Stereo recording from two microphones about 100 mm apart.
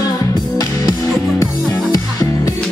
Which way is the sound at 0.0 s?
35° left (ahead or behind).